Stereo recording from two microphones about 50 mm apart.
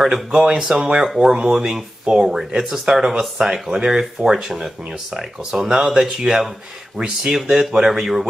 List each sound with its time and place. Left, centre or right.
0.0 s speech: centre